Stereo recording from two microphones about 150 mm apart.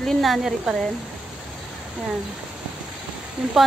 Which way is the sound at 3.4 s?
5° right (ahead or behind).